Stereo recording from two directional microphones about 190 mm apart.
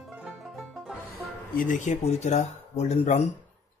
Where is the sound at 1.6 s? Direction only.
40° left (ahead or behind).